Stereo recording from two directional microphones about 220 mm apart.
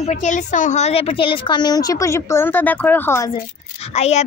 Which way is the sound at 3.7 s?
30° left (ahead or behind).